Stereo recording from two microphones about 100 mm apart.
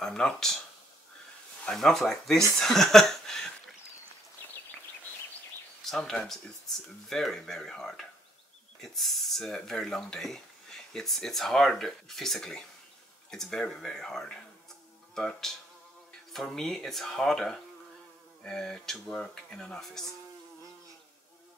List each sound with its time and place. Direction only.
0.0 s speech: 5° left (ahead or behind)
1.7 s speech: 5° left (ahead or behind)
2.5 s a sound: 5° left (ahead or behind)
5.9 s speech: 5° left (ahead or behind)